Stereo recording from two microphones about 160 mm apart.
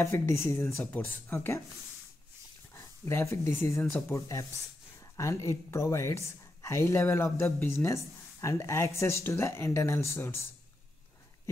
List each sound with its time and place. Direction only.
0.0 s a woman's voice: 15° left (ahead or behind)
2.7 s a woman's voice: 15° left (ahead or behind)